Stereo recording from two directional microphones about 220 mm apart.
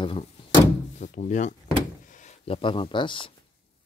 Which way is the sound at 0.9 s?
30° left (ahead or behind).